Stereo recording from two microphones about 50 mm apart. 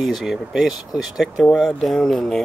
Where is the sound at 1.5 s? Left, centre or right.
Centre.